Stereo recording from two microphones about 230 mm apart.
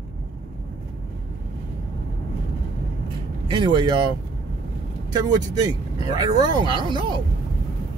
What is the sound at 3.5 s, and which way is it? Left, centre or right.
Speech, centre.